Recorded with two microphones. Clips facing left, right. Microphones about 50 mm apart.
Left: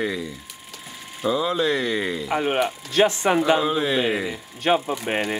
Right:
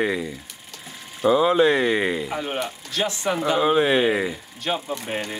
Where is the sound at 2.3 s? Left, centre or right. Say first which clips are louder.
Left 5 dB; left.